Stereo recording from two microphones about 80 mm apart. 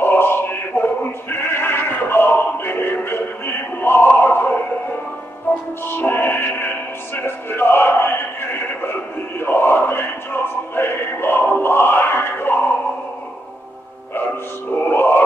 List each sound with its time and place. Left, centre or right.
0.0 s music: left
5.9 s music: left
9.4 s a sound: left
14.8 s music: left